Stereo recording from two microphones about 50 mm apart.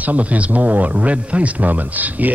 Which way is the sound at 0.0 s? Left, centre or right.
Right.